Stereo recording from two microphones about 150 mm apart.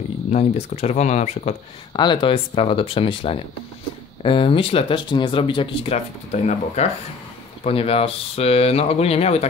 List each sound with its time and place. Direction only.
0.3 s speech: 45° left (ahead or behind)
2.0 s speech: 30° left (ahead or behind)
5.9 s speech: 50° left (ahead or behind)